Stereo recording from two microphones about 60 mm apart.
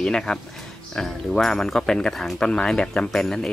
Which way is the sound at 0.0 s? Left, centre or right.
Centre.